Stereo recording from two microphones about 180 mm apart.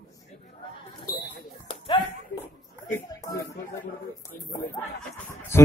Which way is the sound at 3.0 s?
15° left (ahead or behind).